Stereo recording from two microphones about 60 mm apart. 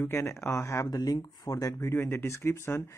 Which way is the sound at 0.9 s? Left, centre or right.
Left.